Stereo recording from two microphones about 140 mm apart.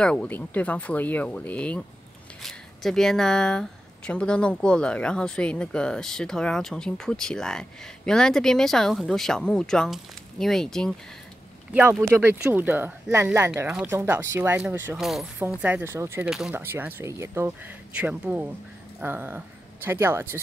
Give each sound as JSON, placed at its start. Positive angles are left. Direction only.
{"t": 0.0, "sound": "speech", "side_deg": 5}
{"t": 11.7, "sound": "speech", "side_deg": -10}
{"t": 15.0, "sound": "speech", "side_deg": 0}
{"t": 15.3, "sound": "speech", "side_deg": -10}
{"t": 16.3, "sound": "speech", "side_deg": 0}
{"t": 16.5, "sound": "speech", "side_deg": -15}